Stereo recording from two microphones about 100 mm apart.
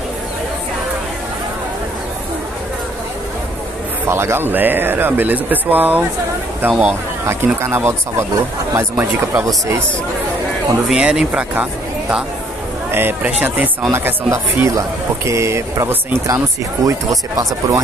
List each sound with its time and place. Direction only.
4.1 s a man's voice: 25° right (ahead or behind)
7.6 s a man's voice: 25° right (ahead or behind)
10.9 s a man's voice: 10° right (ahead or behind)
13.9 s a man's voice: 25° right (ahead or behind)
17.4 s speech: 35° right (ahead or behind)